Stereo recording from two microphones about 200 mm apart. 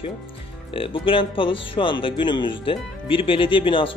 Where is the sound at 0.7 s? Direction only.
25° left (ahead or behind).